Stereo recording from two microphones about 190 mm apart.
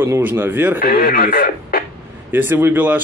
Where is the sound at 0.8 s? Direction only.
50° left (ahead or behind).